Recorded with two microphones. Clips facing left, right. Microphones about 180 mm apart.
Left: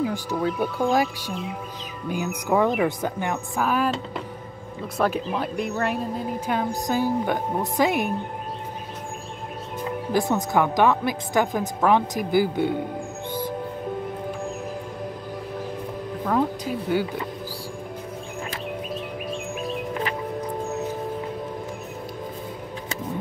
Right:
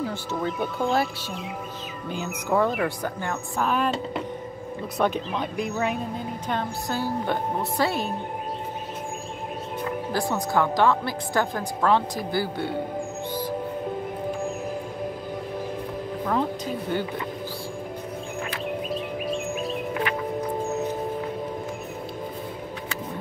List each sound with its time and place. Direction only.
0.0 s speech: 10° left (ahead or behind)
3.5 s speech: 5° left (ahead or behind)
10.1 s speech: 20° left (ahead or behind)
16.3 s speech: 5° left (ahead or behind)